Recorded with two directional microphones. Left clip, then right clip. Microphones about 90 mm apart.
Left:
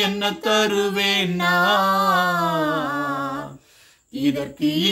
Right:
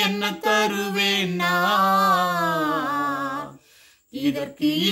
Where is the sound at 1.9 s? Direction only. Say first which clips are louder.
Left 1 dB; 45° right (ahead or behind).